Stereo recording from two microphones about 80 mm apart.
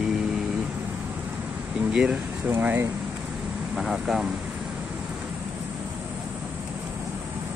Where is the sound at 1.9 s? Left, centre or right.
Centre.